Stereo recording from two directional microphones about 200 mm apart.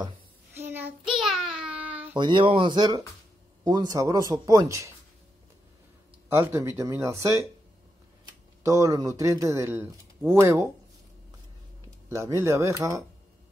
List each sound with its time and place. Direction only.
0.6 s child singing: 10° right (ahead or behind)
2.1 s speech: 25° right (ahead or behind)
6.2 s speech: 15° right (ahead or behind)
8.6 s speech: 15° right (ahead or behind)
12.2 s speech: 15° right (ahead or behind)